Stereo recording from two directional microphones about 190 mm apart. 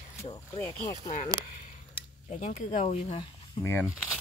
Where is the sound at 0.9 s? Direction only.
40° left (ahead or behind).